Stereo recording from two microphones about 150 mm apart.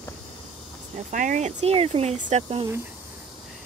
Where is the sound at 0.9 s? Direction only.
60° right (ahead or behind).